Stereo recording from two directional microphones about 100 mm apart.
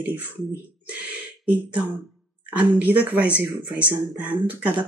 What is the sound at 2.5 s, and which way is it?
Speech, 15° right (ahead or behind).